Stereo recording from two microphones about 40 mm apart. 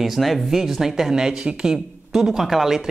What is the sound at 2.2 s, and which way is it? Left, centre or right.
Speech, centre.